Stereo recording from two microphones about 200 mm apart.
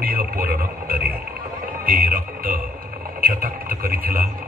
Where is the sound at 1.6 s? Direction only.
45° right (ahead or behind).